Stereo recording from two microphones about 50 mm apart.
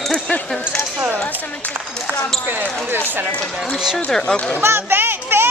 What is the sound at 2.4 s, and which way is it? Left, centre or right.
Speech, right.